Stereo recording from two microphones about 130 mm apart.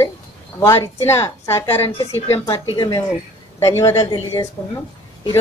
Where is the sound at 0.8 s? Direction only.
20° left (ahead or behind).